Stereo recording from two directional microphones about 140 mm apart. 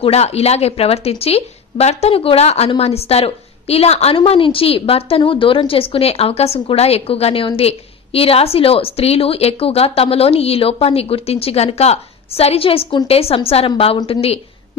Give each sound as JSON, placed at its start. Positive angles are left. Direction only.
{"t": 0.0, "sound": "a woman's voice", "side_deg": 45}